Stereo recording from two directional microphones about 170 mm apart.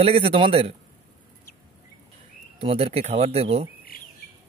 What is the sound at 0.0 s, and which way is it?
Speech, 35° right (ahead or behind).